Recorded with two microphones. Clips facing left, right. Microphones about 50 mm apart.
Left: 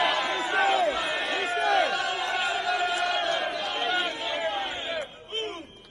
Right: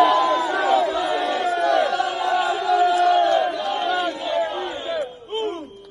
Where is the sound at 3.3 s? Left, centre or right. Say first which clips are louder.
Right 8 dB; left.